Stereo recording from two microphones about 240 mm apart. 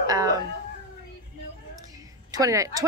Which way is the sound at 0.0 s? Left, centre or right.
Centre.